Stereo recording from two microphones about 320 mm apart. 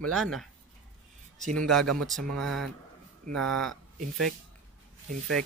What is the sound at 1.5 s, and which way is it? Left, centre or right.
Speech, centre.